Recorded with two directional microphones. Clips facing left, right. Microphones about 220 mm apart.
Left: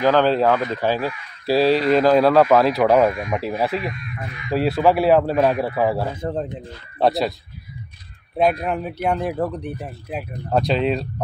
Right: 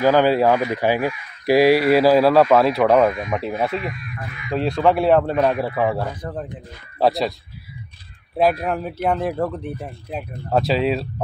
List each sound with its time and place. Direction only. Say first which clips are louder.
0.0 s speech: right 1 dB; 10° right (ahead or behind)
6.2 s speech: left 4 dB; 25° left (ahead or behind)
7.0 s speech: even; centre (ahead or behind)
8.4 s speech: right 1 dB; 5° right (ahead or behind)